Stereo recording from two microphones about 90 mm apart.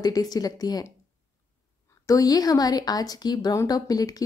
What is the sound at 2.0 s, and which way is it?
Speech, 45° left (ahead or behind).